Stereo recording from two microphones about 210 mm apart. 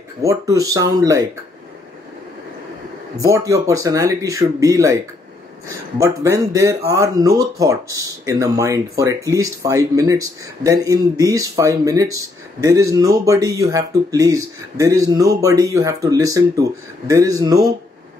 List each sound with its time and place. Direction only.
0.2 s speech: 15° right (ahead or behind)
3.2 s speech: 15° right (ahead or behind)
5.9 s speech: 15° right (ahead or behind)